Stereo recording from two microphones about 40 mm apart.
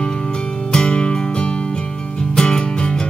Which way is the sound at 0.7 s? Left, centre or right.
Left.